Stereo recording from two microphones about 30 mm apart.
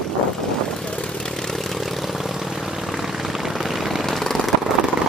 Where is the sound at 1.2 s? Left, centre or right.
Centre.